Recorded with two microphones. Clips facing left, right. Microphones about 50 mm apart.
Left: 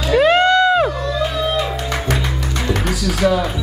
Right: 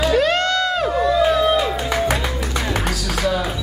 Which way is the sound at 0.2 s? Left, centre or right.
Centre.